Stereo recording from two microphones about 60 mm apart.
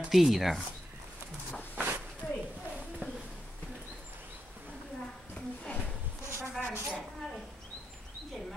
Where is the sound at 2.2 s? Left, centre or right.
Left.